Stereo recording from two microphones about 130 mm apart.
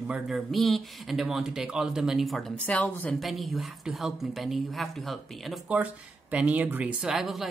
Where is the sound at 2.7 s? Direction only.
10° left (ahead or behind).